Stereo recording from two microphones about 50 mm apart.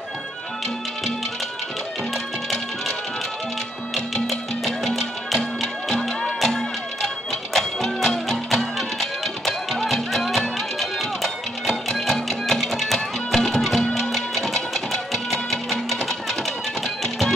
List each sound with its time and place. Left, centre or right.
3.9 s music: centre
13.8 s music: centre